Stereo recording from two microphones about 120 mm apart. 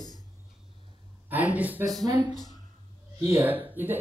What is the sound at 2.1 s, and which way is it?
Speech, 35° right (ahead or behind).